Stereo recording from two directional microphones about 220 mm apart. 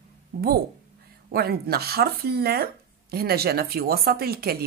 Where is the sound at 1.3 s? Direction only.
45° right (ahead or behind).